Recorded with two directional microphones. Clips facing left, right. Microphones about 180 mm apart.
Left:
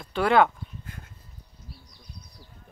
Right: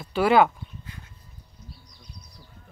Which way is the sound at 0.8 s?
50° left (ahead or behind).